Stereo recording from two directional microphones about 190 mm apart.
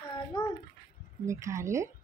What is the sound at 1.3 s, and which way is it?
Speech, 15° right (ahead or behind).